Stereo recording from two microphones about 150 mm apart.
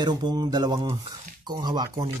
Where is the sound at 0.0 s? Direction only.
30° right (ahead or behind).